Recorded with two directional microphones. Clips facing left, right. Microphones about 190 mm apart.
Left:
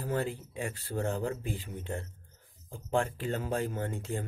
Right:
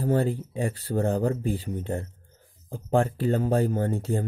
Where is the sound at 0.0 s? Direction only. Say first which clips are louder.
Right 8 dB; 35° right (ahead or behind).